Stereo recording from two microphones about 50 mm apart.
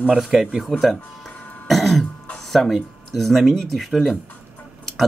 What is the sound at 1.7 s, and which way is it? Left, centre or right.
Throat clearing, centre.